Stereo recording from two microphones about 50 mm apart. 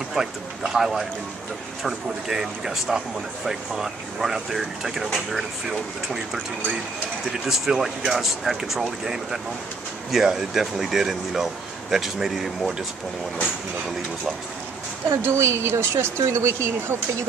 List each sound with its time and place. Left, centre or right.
0.1 s speech: centre
7.4 s speech: centre
15.2 s speech: right